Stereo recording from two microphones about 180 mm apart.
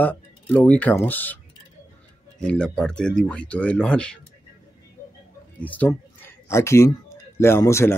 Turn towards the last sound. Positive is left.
turn(degrees=15)  # may be behind; listen again after turning